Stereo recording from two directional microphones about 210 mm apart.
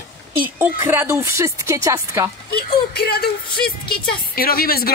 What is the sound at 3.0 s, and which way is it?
Speech, 45° left (ahead or behind).